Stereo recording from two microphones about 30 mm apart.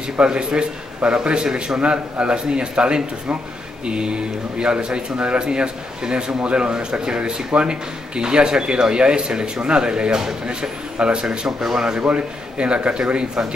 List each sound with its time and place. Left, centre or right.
0.2 s speech: right
1.8 s speech: right
12.1 s speech: right